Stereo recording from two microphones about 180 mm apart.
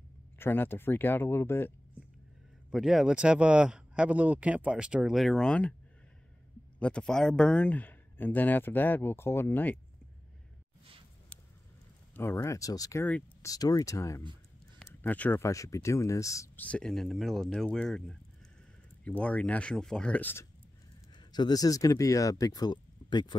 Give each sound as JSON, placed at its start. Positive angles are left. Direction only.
{"t": 0.4, "sound": "speech", "side_deg": 10}
{"t": 2.7, "sound": "speech", "side_deg": 0}
{"t": 6.8, "sound": "speech", "side_deg": 5}
{"t": 12.2, "sound": "speech", "side_deg": 15}
{"t": 21.1, "sound": "speech", "side_deg": 25}